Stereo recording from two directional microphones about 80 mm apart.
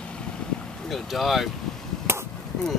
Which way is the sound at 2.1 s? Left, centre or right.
Right.